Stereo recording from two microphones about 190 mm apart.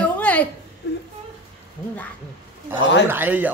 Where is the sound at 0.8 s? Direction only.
60° left (ahead or behind).